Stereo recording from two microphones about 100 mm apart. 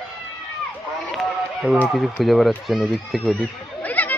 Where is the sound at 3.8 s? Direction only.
15° left (ahead or behind).